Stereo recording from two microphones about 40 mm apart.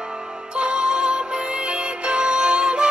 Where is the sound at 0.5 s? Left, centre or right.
Right.